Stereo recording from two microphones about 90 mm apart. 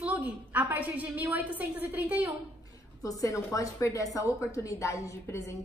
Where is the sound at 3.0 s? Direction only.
40° left (ahead or behind).